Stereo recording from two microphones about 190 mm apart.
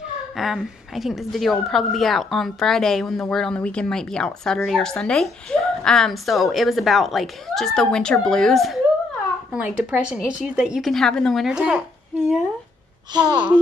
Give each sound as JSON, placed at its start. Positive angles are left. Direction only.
{"t": 0.4, "sound": "a woman's voice", "side_deg": 0}
{"t": 13.1, "sound": "a child's voice", "side_deg": -20}